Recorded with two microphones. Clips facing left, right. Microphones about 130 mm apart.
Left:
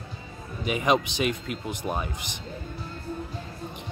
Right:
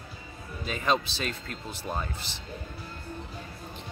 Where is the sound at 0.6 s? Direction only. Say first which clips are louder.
Left 4 dB; 15° left (ahead or behind).